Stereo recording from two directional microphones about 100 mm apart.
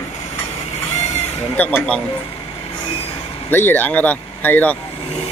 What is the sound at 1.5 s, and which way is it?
Speech, 10° left (ahead or behind).